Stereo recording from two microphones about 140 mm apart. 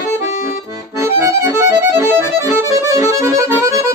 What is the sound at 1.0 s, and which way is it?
Accordion, 20° right (ahead or behind).